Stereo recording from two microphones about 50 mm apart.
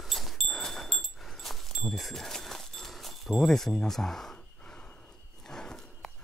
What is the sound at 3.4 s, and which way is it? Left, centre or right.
Speech, centre.